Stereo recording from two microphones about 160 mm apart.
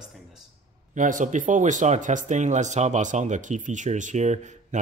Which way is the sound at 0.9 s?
55° right (ahead or behind).